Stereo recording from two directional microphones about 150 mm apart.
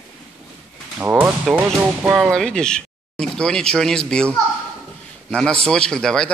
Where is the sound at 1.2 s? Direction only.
10° right (ahead or behind).